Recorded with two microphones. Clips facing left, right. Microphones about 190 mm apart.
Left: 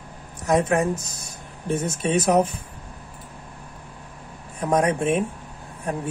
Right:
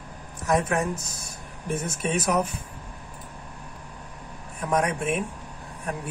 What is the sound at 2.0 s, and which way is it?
Speech, 25° left (ahead or behind).